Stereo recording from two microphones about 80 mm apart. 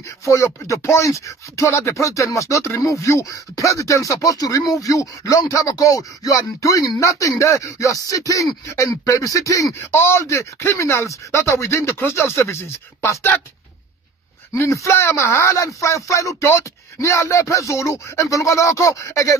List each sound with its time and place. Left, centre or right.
0.2 s speech: left
14.5 s speech: left